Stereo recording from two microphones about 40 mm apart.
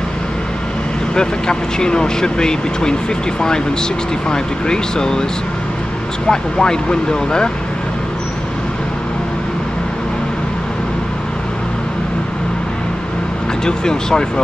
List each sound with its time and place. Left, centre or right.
1.1 s speech: centre
6.2 s speech: centre
13.7 s speech: centre